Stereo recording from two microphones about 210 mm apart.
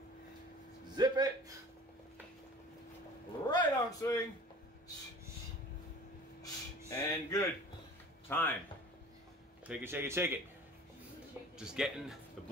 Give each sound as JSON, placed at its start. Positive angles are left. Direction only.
{"t": 0.9, "sound": "a man's voice", "side_deg": -20}
{"t": 3.4, "sound": "a sound", "side_deg": 20}
{"t": 6.9, "sound": "a sound", "side_deg": 15}
{"t": 8.3, "sound": "speech", "side_deg": 10}
{"t": 9.7, "sound": "speech", "side_deg": -10}
{"t": 11.5, "sound": "speech", "side_deg": -5}